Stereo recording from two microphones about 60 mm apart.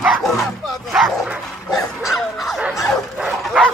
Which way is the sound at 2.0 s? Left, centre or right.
Centre.